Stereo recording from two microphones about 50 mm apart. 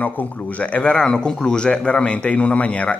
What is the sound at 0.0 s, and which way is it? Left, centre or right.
Speech, left.